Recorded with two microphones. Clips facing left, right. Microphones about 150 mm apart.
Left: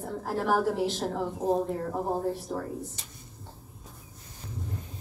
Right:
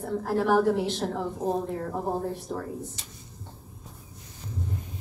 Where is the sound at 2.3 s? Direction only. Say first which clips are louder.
Left 1 dB; 5° left (ahead or behind).